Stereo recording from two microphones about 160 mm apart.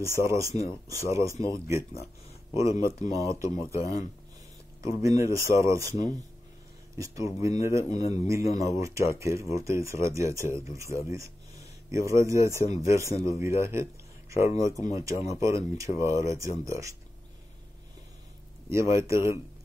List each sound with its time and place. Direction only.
0.2 s speech: 20° right (ahead or behind)
3.8 s speech: 45° left (ahead or behind)
4.8 s speech: 20° right (ahead or behind)
18.7 s speech: 15° right (ahead or behind)